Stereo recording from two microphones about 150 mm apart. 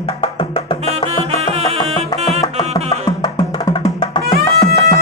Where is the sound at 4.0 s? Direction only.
30° left (ahead or behind).